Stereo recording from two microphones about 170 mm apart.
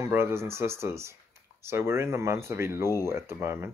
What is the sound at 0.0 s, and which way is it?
Speech, 15° right (ahead or behind).